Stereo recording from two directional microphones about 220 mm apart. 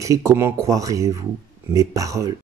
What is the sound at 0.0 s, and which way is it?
Speech, 15° right (ahead or behind).